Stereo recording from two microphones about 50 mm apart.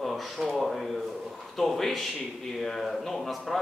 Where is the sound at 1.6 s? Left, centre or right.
Centre.